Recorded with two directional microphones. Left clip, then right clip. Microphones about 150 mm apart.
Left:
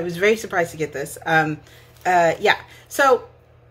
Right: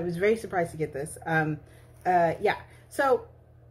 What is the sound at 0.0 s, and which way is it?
Speech, 10° left (ahead or behind).